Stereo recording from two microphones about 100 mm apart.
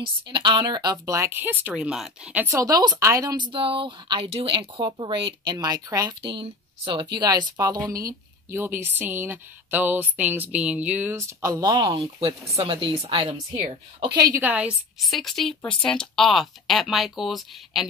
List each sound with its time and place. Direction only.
0.0 s a woman's voice: 50° right (ahead or behind); by 1.7 s 20° right (ahead or behind)
1.8 s speech: 5° right (ahead or behind)
2.5 s a woman's voice: 35° right (ahead or behind); by 4.6 s 70° right (ahead or behind)
4.8 s speech: 55° right (ahead or behind); by 6.1 s 35° right (ahead or behind)
6.2 s speech: 60° right (ahead or behind); by 11.1 s 15° right (ahead or behind)
11.1 s speech: 30° right (ahead or behind)
11.6 s a woman's voice: 40° right (ahead or behind)
12.5 s speech: 75° right (ahead or behind)
14.0 s a woman's voice: 40° right (ahead or behind)
14.4 s speech: 15° right (ahead or behind)
15.0 s speech: centre (ahead or behind)